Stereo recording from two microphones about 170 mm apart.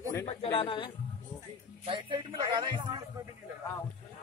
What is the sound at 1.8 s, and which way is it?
Speech, 30° right (ahead or behind).